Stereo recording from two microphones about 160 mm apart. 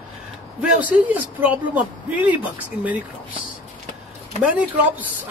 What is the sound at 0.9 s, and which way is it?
Speech, 10° right (ahead or behind).